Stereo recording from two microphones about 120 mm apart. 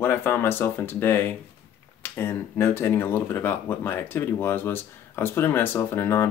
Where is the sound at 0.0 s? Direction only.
20° left (ahead or behind).